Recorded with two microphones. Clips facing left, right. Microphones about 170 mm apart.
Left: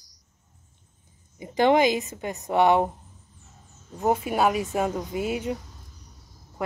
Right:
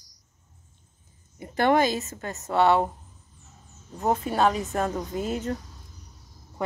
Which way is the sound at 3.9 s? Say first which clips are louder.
Left 1 dB; 10° left (ahead or behind).